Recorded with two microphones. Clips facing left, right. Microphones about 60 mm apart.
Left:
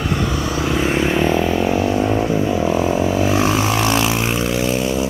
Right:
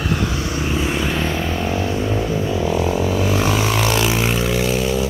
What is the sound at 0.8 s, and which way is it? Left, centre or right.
Vehicle, left.